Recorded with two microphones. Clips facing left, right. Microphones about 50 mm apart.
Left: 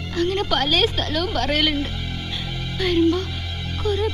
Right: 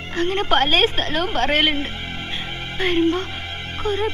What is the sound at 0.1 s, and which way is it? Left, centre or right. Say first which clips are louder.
Speech: right 2 dB; right.